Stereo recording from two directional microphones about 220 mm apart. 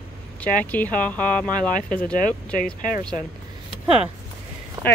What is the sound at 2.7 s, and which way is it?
Speech, 35° left (ahead or behind).